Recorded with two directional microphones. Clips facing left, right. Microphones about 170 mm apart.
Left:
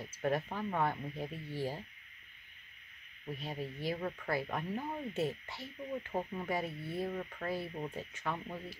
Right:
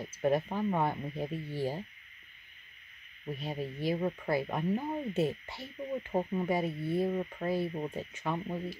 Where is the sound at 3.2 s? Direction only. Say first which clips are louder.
Right 4 dB; 15° right (ahead or behind).